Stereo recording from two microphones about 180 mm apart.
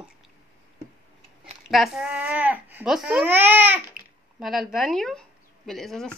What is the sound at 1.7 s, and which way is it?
A child's voice, centre (ahead or behind).